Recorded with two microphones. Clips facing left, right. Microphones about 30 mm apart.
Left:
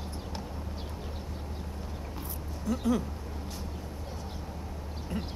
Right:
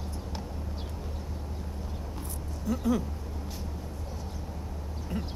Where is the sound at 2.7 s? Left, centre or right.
Centre.